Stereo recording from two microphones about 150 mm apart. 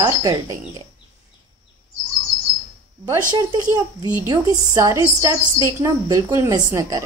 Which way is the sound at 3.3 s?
25° right (ahead or behind).